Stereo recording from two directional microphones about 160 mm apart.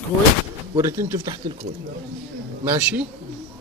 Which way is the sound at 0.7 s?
15° right (ahead or behind).